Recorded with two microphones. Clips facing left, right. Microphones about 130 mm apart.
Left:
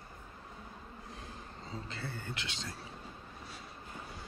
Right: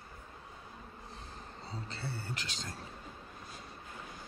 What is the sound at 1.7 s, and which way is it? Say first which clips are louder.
Speech: even; 35° right (ahead or behind).